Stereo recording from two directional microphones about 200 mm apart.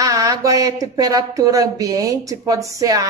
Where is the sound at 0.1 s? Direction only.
15° right (ahead or behind).